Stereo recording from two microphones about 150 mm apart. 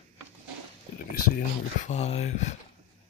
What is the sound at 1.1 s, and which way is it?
Speech, 80° left.